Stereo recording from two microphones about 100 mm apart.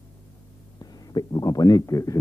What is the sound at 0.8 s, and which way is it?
Speech, 40° left (ahead or behind).